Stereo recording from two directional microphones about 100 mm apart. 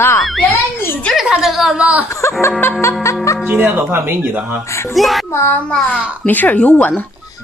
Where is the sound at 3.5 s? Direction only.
20° right (ahead or behind).